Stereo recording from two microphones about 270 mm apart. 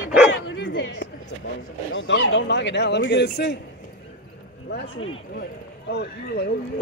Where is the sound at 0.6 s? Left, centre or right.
Left.